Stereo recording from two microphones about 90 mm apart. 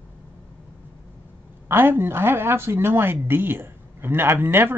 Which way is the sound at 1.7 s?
25° right (ahead or behind).